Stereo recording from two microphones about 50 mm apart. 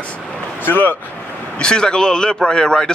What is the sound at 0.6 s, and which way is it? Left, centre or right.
Speech, left.